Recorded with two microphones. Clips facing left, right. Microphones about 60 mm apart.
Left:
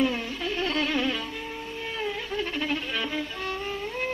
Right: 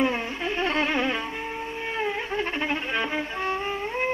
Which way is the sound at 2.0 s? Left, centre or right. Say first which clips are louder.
Right 3 dB; right.